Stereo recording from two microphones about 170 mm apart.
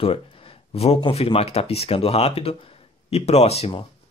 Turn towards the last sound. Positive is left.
turn(degrees=35)  # may be behind; listen again after turning